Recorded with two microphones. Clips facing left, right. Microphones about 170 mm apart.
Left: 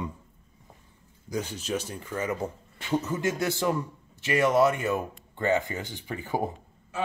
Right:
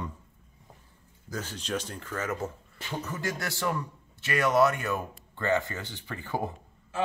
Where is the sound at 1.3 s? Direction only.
15° left (ahead or behind).